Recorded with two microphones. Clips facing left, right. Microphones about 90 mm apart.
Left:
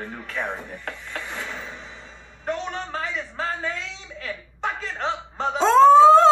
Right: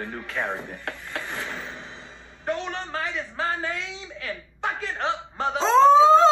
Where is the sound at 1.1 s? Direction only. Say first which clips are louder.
Even; 50° right (ahead or behind).